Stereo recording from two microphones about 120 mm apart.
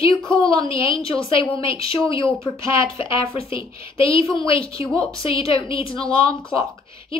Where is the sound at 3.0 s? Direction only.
50° left (ahead or behind).